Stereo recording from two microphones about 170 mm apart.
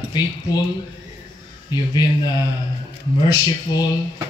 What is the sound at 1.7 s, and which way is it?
Speech, 25° left (ahead or behind).